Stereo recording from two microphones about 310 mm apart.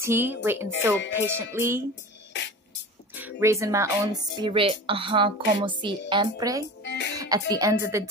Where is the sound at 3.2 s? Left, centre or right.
Centre.